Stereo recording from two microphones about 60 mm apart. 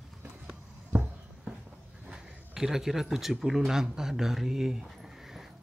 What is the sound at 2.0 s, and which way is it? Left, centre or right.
Speech, centre.